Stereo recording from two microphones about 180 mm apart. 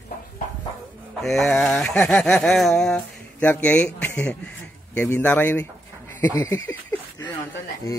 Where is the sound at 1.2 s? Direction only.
Centre (ahead or behind); by 6.6 s 15° left (ahead or behind).